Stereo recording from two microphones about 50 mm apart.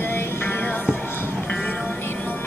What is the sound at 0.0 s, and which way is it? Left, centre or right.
Music, left.